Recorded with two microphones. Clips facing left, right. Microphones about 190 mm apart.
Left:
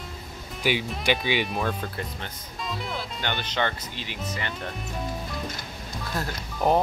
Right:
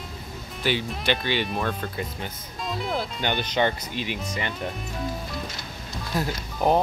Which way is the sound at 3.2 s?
15° right (ahead or behind).